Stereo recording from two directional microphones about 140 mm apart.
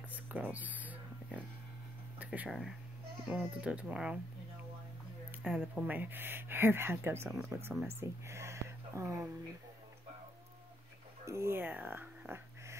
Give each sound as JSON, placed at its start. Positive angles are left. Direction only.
{"t": 0.1, "sound": "a sound", "side_deg": -10}
{"t": 2.1, "sound": "speech", "side_deg": -10}
{"t": 5.4, "sound": "speech", "side_deg": -5}
{"t": 11.2, "sound": "speech", "side_deg": -20}